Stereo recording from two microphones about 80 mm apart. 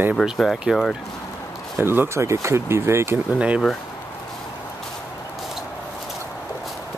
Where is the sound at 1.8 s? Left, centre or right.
Right.